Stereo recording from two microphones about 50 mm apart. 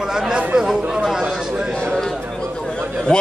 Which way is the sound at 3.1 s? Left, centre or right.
Centre.